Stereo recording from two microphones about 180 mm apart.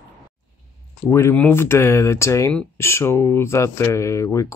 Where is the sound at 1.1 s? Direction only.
15° left (ahead or behind).